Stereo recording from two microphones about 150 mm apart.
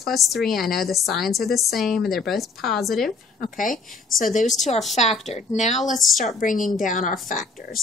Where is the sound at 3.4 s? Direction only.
65° left (ahead or behind).